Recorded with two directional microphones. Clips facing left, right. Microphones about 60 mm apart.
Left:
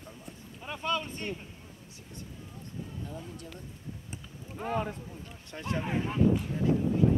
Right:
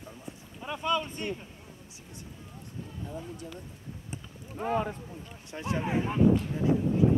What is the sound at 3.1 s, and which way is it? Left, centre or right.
Speech, centre.